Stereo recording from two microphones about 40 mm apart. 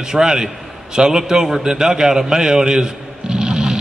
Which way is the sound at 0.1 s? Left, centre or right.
Centre.